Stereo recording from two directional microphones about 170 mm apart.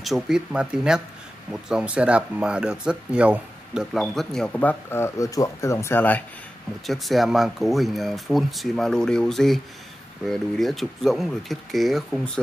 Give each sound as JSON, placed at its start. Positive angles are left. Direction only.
{"t": 0.0, "sound": "speech", "side_deg": 0}
{"t": 6.9, "sound": "speech", "side_deg": 0}